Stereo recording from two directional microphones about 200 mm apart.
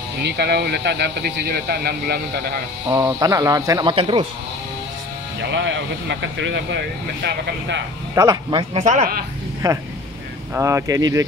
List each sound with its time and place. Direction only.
0.2 s speech: 55° right (ahead or behind)
2.9 s speech: 15° right (ahead or behind)
5.5 s speech: 65° right (ahead or behind)
8.1 s speech: 15° right (ahead or behind)
8.7 s speech: 40° right (ahead or behind)
9.6 s speech: 15° right (ahead or behind)